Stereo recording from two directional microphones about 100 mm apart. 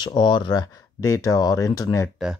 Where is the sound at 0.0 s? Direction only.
45° left (ahead or behind).